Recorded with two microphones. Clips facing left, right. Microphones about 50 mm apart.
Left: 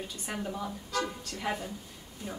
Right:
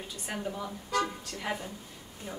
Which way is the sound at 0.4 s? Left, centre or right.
Centre.